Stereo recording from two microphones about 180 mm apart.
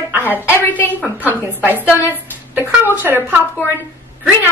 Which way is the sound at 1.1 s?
10° right (ahead or behind).